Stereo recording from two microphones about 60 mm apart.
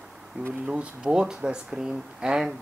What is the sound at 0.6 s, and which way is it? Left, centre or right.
Speech, centre.